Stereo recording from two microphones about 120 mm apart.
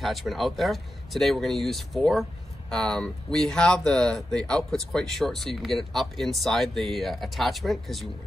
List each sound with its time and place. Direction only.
0.0 s speech: centre (ahead or behind)